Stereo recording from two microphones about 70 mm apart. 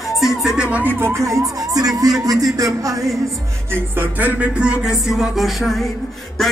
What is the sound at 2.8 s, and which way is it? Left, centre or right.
Music, right.